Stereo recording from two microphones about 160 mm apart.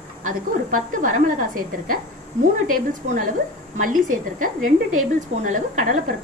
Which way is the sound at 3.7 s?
55° right (ahead or behind).